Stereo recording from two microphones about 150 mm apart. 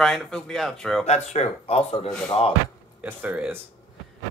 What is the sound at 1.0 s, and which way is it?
Speech, 45° left (ahead or behind).